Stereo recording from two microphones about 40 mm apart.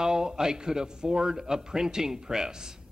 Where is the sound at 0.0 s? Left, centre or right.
Centre.